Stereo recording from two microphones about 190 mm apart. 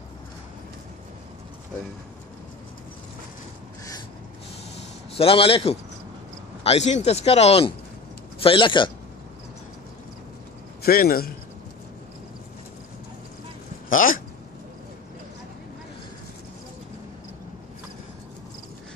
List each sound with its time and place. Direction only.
5.1 s a man's voice: 30° left (ahead or behind)
10.8 s a man's voice: 50° left (ahead or behind)
13.8 s speech: 45° left (ahead or behind)